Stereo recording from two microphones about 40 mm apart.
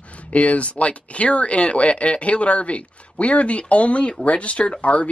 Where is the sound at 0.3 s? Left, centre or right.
Left.